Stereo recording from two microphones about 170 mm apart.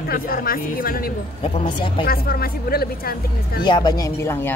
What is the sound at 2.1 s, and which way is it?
Speech, 60° left (ahead or behind).